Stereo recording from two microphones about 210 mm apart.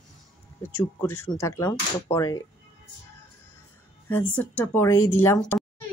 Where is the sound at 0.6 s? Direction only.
10° left (ahead or behind).